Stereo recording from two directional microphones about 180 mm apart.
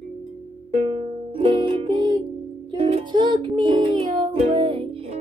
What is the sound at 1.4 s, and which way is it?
Music, 25° right (ahead or behind).